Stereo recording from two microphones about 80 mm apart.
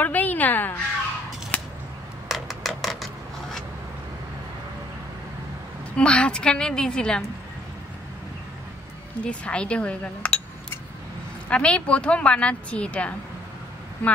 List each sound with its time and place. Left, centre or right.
0.0 s a sound: left
1.5 s scissors: centre
2.2 s a sound: centre
5.9 s a woman's voice: centre
9.2 s a woman's voice: centre
11.4 s a woman's voice: centre